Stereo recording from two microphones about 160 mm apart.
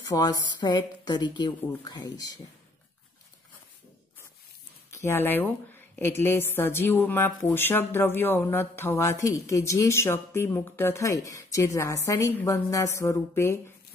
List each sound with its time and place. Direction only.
0.0 s speech: 25° left (ahead or behind)
4.9 s a woman's voice: 15° left (ahead or behind)